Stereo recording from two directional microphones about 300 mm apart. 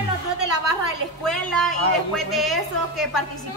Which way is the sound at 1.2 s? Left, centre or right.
Centre.